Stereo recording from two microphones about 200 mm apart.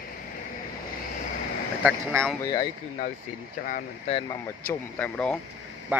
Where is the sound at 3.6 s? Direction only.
40° left (ahead or behind).